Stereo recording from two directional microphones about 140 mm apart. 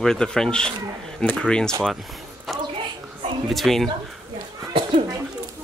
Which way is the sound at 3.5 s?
Centre (ahead or behind).